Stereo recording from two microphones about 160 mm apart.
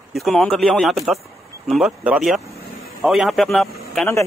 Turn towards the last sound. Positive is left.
turn(degrees=0)  # may be behind; listen again after turning